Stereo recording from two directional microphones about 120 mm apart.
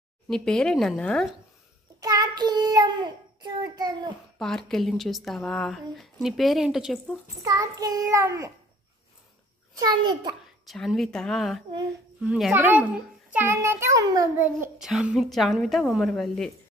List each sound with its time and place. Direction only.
0.3 s speech: 5° left (ahead or behind)
2.0 s child singing: 30° right (ahead or behind)
4.4 s speech: 5° left (ahead or behind)
7.4 s a child's voice: 30° right (ahead or behind)
9.8 s a child's voice: 35° right (ahead or behind)
10.7 s speech: centre (ahead or behind)
12.5 s a child's voice: 15° right (ahead or behind)
14.8 s speech: 5° right (ahead or behind)